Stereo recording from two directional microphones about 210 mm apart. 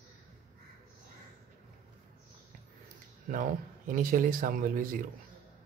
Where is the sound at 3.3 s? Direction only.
40° right (ahead or behind).